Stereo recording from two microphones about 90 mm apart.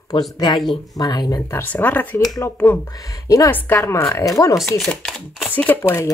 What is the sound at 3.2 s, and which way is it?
A woman's voice, 35° left (ahead or behind).